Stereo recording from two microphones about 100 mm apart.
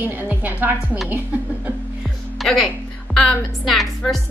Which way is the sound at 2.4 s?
5° left (ahead or behind).